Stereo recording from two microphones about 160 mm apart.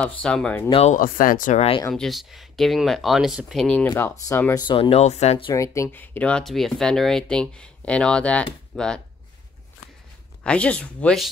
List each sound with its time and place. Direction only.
0.0 s speech: 5° left (ahead or behind)
0.7 s speech: 40° left (ahead or behind)
0.9 s speech: 60° left (ahead or behind)
1.9 s speech: centre (ahead or behind)
4.6 s speech: 30° left (ahead or behind)
5.5 s speech: 20° left (ahead or behind)
10.4 s speech: 10° left (ahead or behind)